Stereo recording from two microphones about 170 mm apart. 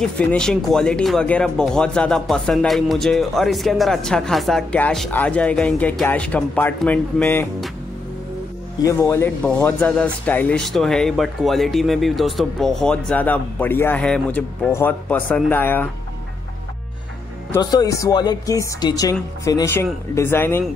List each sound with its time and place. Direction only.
0.0 s speech: 5° left (ahead or behind)
8.8 s speech: 15° left (ahead or behind)
17.5 s speech: 20° left (ahead or behind)